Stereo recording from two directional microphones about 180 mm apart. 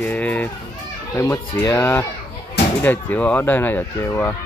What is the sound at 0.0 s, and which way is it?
Speech, 10° left (ahead or behind).